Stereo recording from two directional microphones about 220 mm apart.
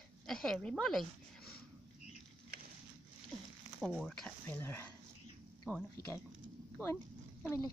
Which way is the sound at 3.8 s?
Centre (ahead or behind).